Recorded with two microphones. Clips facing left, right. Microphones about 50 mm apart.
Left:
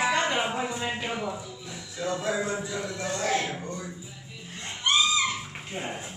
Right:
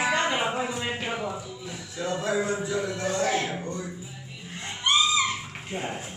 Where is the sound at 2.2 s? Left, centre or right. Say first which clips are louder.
Right 4 dB; centre.